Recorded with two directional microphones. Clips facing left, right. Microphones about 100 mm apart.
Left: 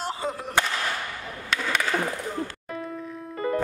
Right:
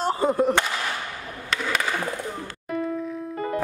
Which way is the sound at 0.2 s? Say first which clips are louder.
Right 10 dB; 45° right (ahead or behind).